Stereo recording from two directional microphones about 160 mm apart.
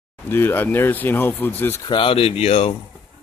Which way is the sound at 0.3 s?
15° left (ahead or behind).